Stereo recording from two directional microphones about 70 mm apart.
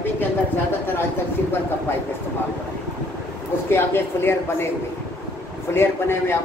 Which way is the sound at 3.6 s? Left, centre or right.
Left.